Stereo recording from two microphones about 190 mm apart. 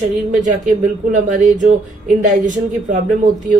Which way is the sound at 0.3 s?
40° right (ahead or behind).